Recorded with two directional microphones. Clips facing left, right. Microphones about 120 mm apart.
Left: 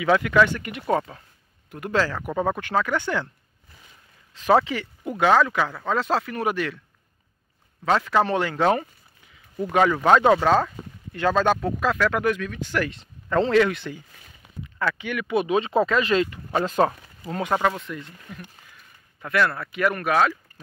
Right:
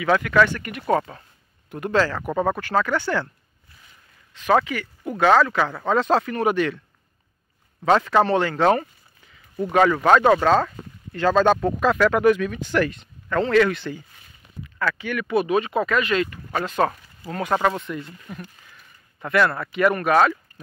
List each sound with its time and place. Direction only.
0.0 s speech: 15° left (ahead or behind)
1.1 s speech: 5° left (ahead or behind)
4.3 s speech: 30° left (ahead or behind)
5.2 s speech: 10° left (ahead or behind)
5.7 s speech: 5° right (ahead or behind)
7.8 s speech: centre (ahead or behind)
8.2 s speech: 10° left (ahead or behind); by 12.5 s 10° right (ahead or behind)
12.6 s speech: 5° left (ahead or behind)
12.9 s speech: 30° left (ahead or behind)
13.6 s speech: 15° left (ahead or behind)
14.6 s speech: 20° left (ahead or behind)
17.8 s speech: 5° right (ahead or behind)